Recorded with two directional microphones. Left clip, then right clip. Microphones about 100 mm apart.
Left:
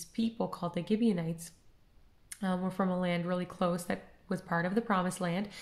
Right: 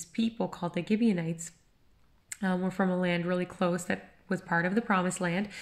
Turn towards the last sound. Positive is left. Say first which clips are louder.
# right 3 dB
turn(degrees=30)  # may be behind; listen again after turning